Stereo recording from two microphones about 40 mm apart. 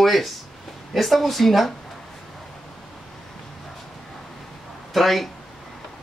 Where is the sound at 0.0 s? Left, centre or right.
Centre.